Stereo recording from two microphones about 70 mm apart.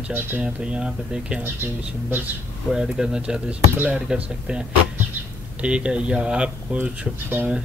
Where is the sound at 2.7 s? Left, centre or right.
Centre.